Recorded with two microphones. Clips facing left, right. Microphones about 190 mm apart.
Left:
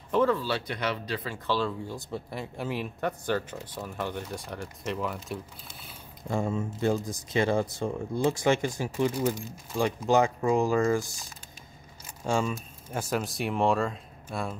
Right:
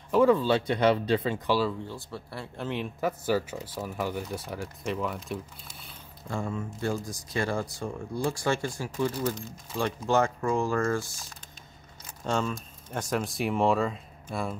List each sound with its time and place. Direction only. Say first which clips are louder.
0.1 s speech: right 3 dB; 10° right (ahead or behind)
0.4 s speech: right 7 dB; 20° right (ahead or behind)
1.5 s speech: right 2 dB; 5° right (ahead or behind)
1.9 s speech: left 3 dB; 20° left (ahead or behind); by 5.4 s centre (ahead or behind)
6.2 s speech: left 4 dB; 20° left (ahead or behind); by 14.6 s centre (ahead or behind)